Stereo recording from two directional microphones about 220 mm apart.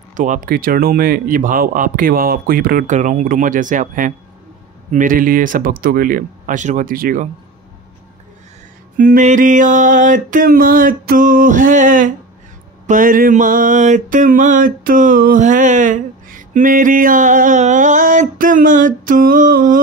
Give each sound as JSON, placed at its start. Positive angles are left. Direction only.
{"t": 0.1, "sound": "mantra", "side_deg": -35}
{"t": 8.9, "sound": "mantra", "side_deg": -40}